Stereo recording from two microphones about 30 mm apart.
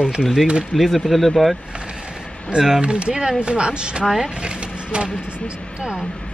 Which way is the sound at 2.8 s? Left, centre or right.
Right.